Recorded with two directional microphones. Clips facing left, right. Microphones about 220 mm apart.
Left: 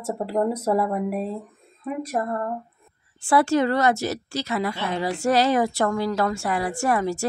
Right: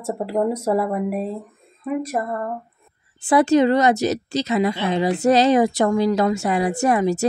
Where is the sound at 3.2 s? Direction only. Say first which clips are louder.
Right 4 dB; 20° right (ahead or behind).